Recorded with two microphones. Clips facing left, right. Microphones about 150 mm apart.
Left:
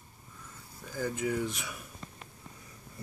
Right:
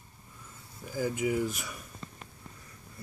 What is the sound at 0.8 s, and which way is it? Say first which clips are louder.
Speech: right 3 dB; 10° right (ahead or behind).